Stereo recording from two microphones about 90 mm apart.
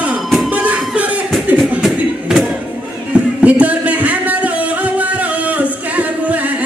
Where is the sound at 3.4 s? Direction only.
15° right (ahead or behind).